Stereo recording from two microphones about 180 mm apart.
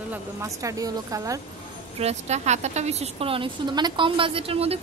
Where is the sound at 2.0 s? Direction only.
35° right (ahead or behind).